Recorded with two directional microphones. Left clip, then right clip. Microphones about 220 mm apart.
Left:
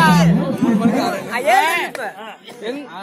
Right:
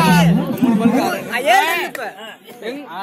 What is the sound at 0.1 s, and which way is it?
Music, 40° right (ahead or behind).